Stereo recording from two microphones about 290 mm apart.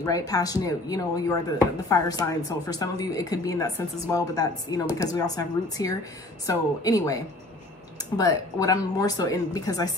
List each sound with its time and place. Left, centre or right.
0.0 s speech: centre